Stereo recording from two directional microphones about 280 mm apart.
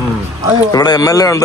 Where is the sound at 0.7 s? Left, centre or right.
Centre.